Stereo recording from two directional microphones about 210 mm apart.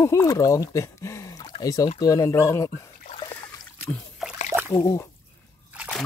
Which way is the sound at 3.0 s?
25° left (ahead or behind).